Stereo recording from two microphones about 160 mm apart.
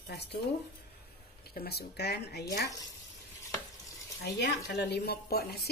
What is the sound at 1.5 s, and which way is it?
Speech, 80° left.